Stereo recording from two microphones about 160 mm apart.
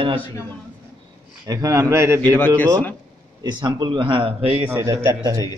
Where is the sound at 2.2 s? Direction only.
10° left (ahead or behind).